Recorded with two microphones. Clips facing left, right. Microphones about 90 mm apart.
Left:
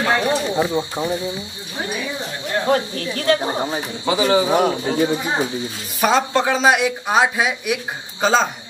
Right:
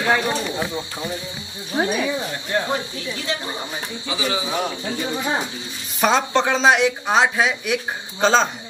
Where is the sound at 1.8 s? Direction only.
50° right (ahead or behind).